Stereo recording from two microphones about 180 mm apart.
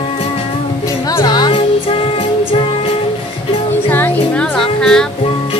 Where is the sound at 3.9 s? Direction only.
10° left (ahead or behind).